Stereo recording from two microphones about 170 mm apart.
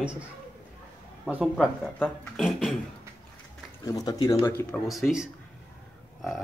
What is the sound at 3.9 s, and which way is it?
Speech, 20° left (ahead or behind).